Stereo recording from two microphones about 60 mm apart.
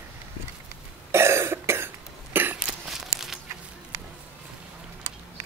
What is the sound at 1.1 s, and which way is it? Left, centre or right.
Cough, right.